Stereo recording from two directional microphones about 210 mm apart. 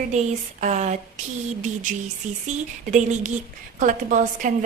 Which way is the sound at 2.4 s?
35° right (ahead or behind).